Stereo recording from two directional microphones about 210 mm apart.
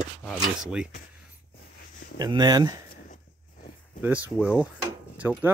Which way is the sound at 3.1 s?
40° left (ahead or behind).